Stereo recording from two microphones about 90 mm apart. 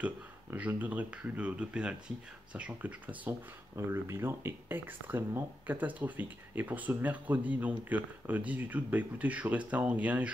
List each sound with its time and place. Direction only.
0.6 s speech: 15° right (ahead or behind)
3.7 s speech: 30° right (ahead or behind)